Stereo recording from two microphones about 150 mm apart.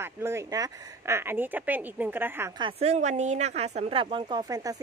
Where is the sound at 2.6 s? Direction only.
45° right (ahead or behind).